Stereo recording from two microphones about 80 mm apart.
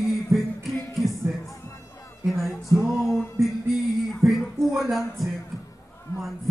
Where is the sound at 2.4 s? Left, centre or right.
Centre.